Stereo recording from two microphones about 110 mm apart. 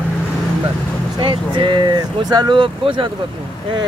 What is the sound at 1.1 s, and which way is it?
Speech, 45° right (ahead or behind).